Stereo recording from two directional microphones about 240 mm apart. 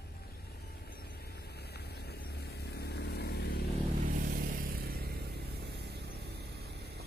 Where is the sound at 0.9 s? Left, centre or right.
Left.